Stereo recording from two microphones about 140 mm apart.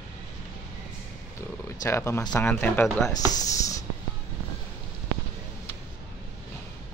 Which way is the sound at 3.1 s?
25° left (ahead or behind).